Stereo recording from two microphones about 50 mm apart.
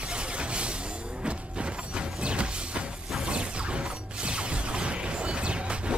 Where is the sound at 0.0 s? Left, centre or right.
Centre.